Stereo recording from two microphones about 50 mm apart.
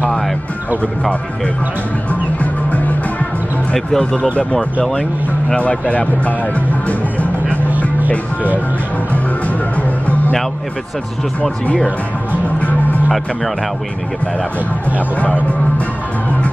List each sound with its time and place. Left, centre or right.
2.0 s music: left
3.7 s speech: centre
4.4 s speech: left
9.8 s music: left
11.6 s speech: left
15.1 s speech: left